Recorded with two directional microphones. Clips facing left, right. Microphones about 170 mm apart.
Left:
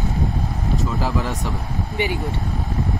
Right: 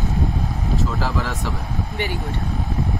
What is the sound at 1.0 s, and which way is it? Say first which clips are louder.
Speech: left 1 dB; 15° left (ahead or behind).